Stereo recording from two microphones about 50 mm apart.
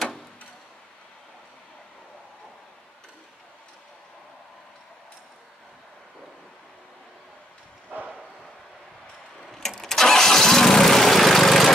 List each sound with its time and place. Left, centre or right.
9.4 s vehicle: centre